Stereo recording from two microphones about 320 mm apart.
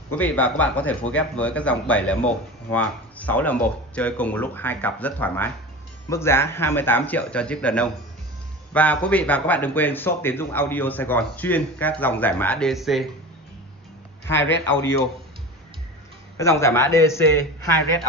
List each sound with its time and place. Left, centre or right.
0.2 s a man's voice: centre
14.2 s speech: centre
16.3 s speech: centre